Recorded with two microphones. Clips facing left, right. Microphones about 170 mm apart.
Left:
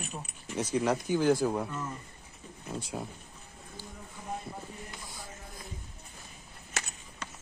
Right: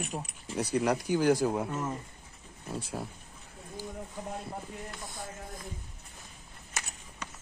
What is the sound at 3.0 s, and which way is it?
Speech, centre (ahead or behind).